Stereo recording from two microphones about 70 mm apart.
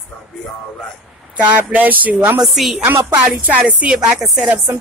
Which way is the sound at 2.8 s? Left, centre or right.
Right.